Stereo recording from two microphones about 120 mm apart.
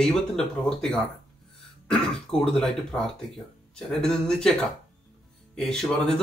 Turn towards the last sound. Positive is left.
turn(degrees=5)  # may be behind; listen again after turning